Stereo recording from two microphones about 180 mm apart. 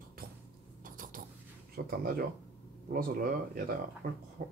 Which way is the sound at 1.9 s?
55° right (ahead or behind).